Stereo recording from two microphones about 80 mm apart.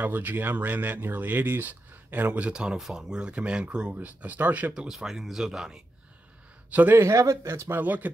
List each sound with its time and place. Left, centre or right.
0.0 s speech: right
4.8 s speech: centre
6.7 s speech: right
7.0 s speech: right
7.8 s speech: right